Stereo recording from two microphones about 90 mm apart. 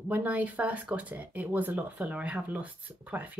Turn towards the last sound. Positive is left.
turn(degrees=-20)  # may be behind; listen again after turning